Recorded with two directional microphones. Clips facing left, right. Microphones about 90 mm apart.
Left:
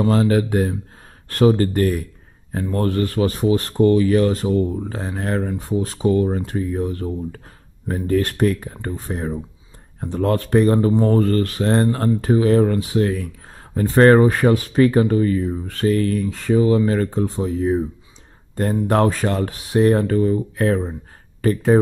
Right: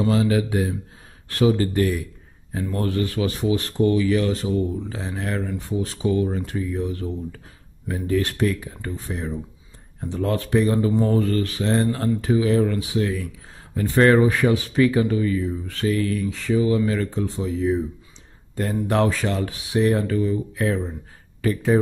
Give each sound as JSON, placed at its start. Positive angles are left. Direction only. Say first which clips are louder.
{"t": 0.0, "sound": "speech", "louder": "left 3 dB", "side_deg": 45}